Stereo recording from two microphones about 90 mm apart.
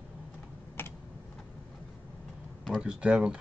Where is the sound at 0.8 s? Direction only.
25° left (ahead or behind).